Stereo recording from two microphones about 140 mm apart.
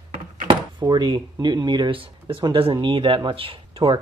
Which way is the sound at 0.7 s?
30° right (ahead or behind).